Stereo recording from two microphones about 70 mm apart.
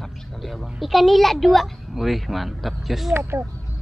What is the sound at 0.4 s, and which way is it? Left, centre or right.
A woman's voice, centre.